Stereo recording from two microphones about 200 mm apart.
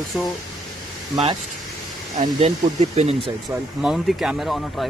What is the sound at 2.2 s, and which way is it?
Speech, 30° right (ahead or behind).